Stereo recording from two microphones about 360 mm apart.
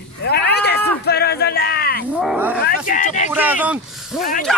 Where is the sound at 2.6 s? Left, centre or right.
Left.